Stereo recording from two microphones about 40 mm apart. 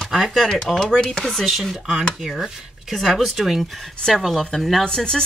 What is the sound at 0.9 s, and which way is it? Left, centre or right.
Speech, centre.